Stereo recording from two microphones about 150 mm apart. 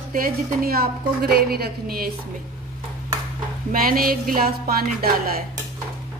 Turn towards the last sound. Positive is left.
turn(degrees=-85)